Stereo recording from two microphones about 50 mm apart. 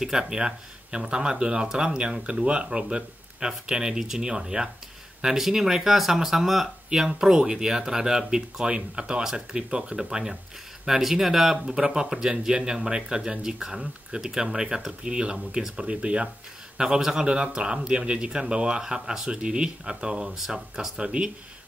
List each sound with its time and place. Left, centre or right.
0.0 s speech: centre
16.7 s speech: centre